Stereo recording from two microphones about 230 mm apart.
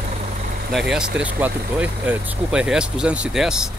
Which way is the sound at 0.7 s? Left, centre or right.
Centre.